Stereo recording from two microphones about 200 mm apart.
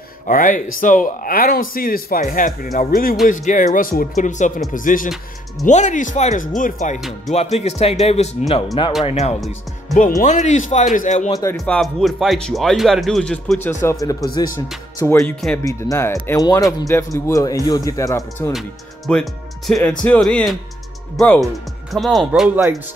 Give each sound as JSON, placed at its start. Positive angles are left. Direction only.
{"t": 0.3, "sound": "speech", "side_deg": 40}
{"t": 7.0, "sound": "speech", "side_deg": 0}
{"t": 7.3, "sound": "speech", "side_deg": 30}
{"t": 11.5, "sound": "speech", "side_deg": 5}
{"t": 15.1, "sound": "speech", "side_deg": 5}
{"t": 18.5, "sound": "speech", "side_deg": 0}